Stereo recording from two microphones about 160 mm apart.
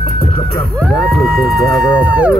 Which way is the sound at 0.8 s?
5° right (ahead or behind).